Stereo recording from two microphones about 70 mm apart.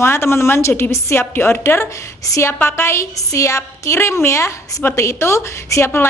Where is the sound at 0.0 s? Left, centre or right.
Left.